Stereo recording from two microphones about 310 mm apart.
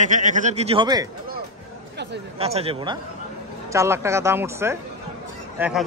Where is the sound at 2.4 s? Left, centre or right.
Centre.